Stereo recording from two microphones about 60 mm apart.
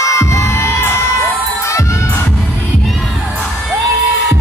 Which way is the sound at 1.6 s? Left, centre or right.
Left.